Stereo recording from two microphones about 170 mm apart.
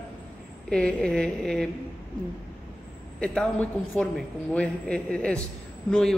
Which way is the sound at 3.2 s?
5° left (ahead or behind).